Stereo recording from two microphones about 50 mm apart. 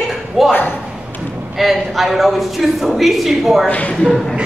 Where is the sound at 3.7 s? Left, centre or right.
Left.